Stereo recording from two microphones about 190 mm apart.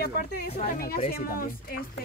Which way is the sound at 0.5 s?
40° left (ahead or behind).